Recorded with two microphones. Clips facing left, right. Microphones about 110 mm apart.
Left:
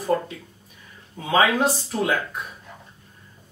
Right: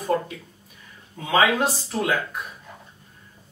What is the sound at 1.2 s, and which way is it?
Speech, centre (ahead or behind).